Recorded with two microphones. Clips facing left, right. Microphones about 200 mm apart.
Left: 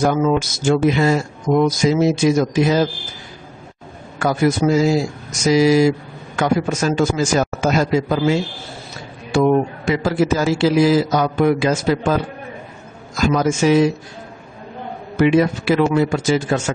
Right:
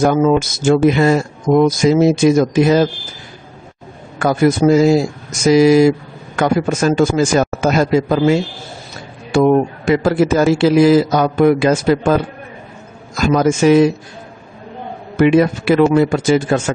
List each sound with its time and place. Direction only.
0.0 s speech: 50° right (ahead or behind)
4.2 s speech: 50° right (ahead or behind)
13.2 s speech: 55° right (ahead or behind)
15.1 s speech: 55° right (ahead or behind)